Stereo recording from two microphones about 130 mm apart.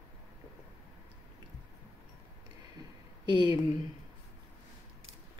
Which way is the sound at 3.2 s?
35° right (ahead or behind).